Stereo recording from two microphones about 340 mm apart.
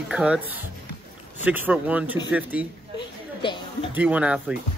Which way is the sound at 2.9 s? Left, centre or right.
Centre.